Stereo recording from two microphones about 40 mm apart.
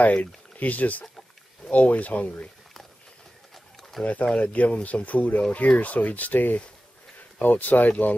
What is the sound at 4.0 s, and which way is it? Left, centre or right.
Speech, left.